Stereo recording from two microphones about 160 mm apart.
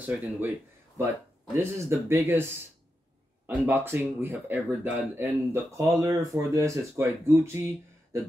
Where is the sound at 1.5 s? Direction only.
15° right (ahead or behind).